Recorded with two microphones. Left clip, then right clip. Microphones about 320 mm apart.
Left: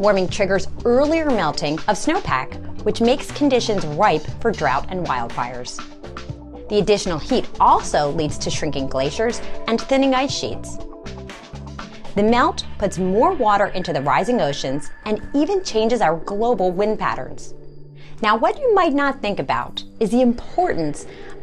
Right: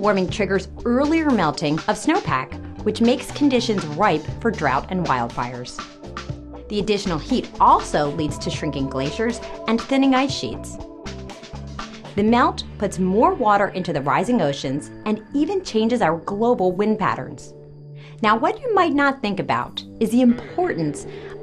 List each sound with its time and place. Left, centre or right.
0.1 s a woman's voice: left
1.4 s a woman's voice: left
3.7 s speech: centre
4.0 s a woman's voice: left
5.2 s speech: centre
6.7 s speech: left
9.8 s a woman's voice: left
12.2 s a woman's voice: left
18.2 s speech: left